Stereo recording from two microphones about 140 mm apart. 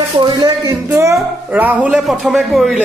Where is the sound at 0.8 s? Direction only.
20° right (ahead or behind).